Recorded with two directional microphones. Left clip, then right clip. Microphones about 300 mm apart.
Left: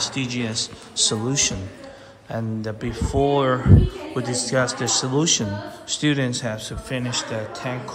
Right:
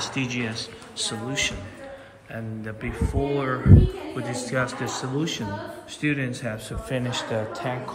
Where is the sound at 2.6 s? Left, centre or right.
Centre.